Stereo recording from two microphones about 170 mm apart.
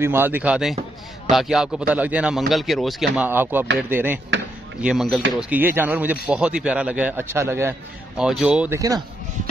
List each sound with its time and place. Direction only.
0.0 s a man's voice: 15° right (ahead or behind)
3.3 s a man's voice: 10° right (ahead or behind)
4.8 s a man's voice: centre (ahead or behind)
8.2 s speech: 5° right (ahead or behind)
8.7 s speech: 20° right (ahead or behind)